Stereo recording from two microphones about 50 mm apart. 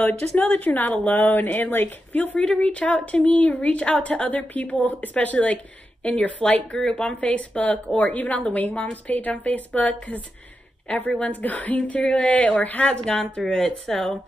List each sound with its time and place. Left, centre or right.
0.0 s speech: left
2.1 s speech: left
12.0 s speech: left
13.4 s speech: centre